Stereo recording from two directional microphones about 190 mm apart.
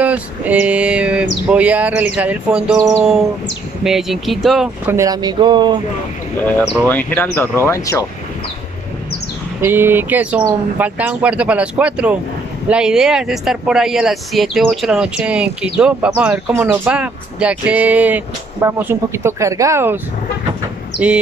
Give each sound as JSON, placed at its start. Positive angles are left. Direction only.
{"t": 0.0, "sound": "speech", "side_deg": -5}
{"t": 4.9, "sound": "speech", "side_deg": -20}
{"t": 6.9, "sound": "speech", "side_deg": 10}
{"t": 9.6, "sound": "speech", "side_deg": -10}